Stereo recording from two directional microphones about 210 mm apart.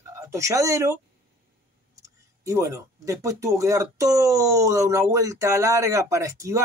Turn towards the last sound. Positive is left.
turn(degrees=-15)  # may be behind; listen again after turning